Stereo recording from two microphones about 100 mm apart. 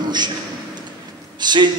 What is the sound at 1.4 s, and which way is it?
Speech, 45° right (ahead or behind).